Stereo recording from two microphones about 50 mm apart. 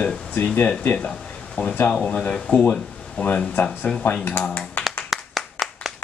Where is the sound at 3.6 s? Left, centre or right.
Left.